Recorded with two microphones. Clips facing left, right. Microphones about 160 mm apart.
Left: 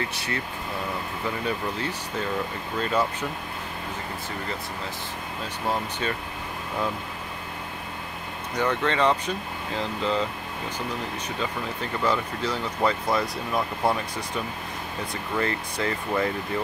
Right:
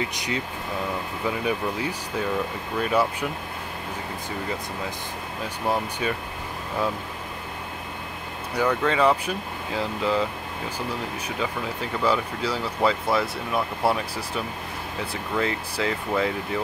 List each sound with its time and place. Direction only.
0.0 s speech: 15° right (ahead or behind)
1.4 s speech: 10° right (ahead or behind)
5.7 s speech: 10° right (ahead or behind)
8.5 s speech: 10° right (ahead or behind)
12.0 s speech: 10° right (ahead or behind)
15.3 s speech: 5° right (ahead or behind)